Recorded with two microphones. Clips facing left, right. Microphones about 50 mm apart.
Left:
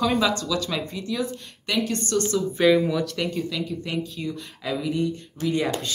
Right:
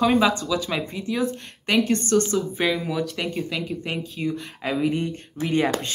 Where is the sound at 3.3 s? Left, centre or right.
Right.